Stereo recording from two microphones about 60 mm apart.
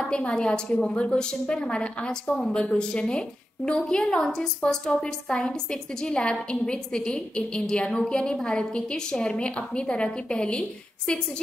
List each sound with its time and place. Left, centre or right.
0.0 s a woman's voice: centre